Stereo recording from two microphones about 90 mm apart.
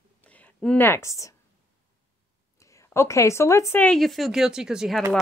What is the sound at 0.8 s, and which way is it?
Speech, 30° left (ahead or behind).